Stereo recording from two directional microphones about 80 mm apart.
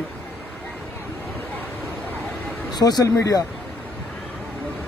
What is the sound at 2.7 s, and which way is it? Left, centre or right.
Speech, left.